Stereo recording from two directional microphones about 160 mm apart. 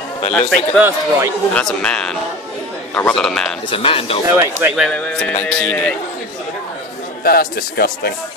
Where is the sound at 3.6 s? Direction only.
35° left (ahead or behind).